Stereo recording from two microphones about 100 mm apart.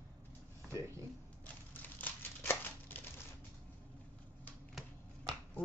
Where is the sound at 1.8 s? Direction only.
20° left (ahead or behind).